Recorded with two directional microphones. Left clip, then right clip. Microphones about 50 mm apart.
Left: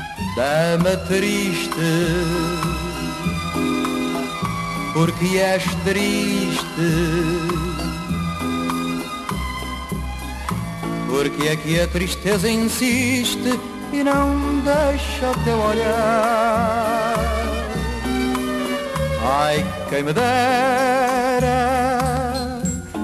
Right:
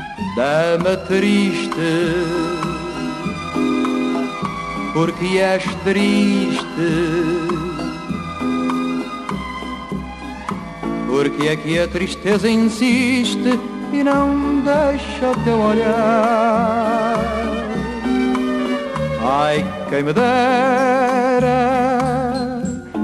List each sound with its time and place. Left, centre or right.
0.4 s music: left
11.1 s music: left
20.2 s music: centre; by 22.4 s left